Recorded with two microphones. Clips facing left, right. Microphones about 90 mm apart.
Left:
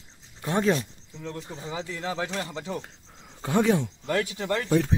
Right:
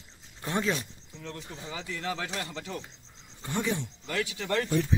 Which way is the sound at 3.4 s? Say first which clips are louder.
Left 8 dB; 90° left.